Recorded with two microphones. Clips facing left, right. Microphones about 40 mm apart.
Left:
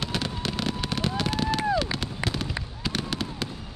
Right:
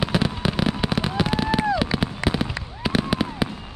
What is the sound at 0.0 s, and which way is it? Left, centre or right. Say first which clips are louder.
Fireworks: right 7 dB; centre.